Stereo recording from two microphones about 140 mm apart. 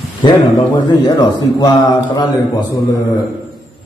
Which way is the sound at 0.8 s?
30° left (ahead or behind).